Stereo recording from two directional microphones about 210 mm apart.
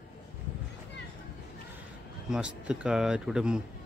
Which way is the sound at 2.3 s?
5° right (ahead or behind).